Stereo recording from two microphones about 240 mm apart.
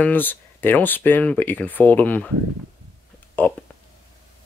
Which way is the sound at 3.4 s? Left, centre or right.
Centre.